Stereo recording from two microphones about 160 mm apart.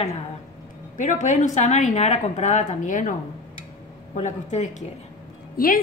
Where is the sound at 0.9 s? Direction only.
50° left (ahead or behind).